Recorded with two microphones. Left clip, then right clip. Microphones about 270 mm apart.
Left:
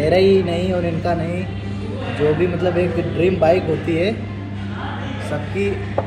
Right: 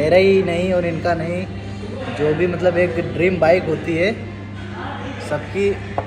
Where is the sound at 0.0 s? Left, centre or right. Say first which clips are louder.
Right 1 dB; centre.